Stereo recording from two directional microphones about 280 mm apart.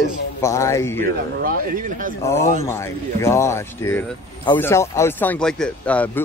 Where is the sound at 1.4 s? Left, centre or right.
Right.